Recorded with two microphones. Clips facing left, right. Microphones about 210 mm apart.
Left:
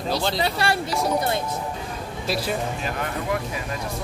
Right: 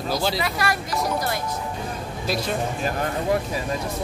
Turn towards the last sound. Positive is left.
turn(degrees=-40)  # may be behind; listen again after turning